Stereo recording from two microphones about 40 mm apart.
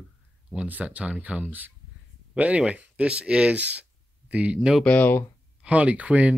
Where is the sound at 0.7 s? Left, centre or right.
Right.